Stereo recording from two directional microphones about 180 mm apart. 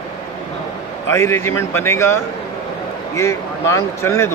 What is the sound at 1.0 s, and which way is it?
Speech, 15° left (ahead or behind).